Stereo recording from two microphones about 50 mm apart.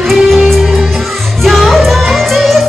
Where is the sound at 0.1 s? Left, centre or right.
Centre.